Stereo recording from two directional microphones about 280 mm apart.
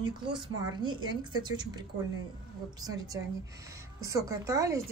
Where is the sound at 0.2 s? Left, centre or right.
Centre.